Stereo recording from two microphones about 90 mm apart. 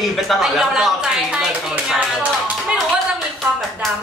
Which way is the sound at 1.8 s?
10° right (ahead or behind).